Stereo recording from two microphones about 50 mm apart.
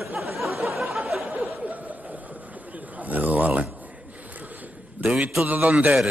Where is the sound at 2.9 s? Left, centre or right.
Right.